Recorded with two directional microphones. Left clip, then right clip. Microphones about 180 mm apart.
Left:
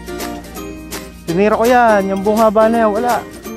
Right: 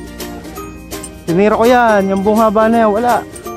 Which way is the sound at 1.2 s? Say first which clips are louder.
Right 2 dB; 10° left (ahead or behind).